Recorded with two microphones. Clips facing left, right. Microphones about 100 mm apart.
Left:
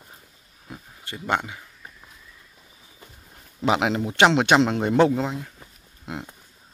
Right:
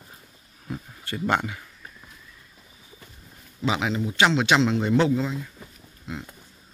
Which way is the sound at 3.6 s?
60° left (ahead or behind).